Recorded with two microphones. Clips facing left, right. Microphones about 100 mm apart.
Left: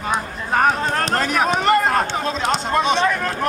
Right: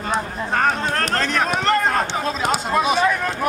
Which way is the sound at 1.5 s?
5° left (ahead or behind).